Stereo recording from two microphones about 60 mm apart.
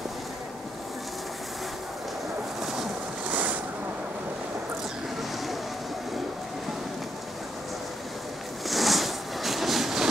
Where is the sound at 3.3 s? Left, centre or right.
Right.